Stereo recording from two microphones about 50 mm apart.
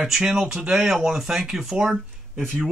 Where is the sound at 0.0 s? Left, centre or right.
Centre.